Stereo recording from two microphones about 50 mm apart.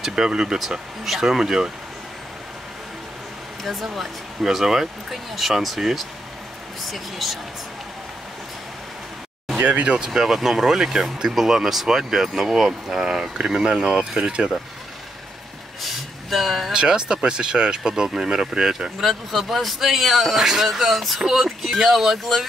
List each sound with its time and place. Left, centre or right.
0.0 s speech: centre
3.6 s speech: centre
9.6 s speech: right
9.9 s speech: centre
15.8 s speech: centre
16.7 s speech: centre